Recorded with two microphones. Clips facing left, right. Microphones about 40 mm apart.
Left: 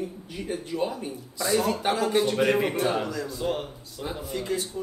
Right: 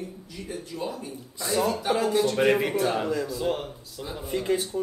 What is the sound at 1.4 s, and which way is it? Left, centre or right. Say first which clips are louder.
Speech: left 1 dB; centre.